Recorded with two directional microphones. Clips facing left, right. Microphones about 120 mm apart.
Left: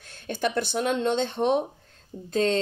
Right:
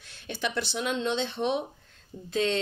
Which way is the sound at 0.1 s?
50° left (ahead or behind).